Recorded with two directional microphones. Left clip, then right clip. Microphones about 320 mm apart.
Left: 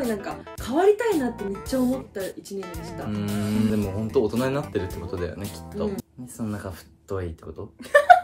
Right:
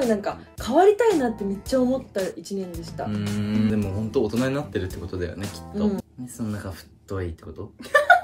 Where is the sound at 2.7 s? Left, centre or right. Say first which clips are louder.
Right 2 dB; centre.